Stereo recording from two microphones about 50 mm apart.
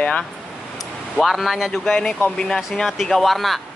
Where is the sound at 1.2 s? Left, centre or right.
Centre.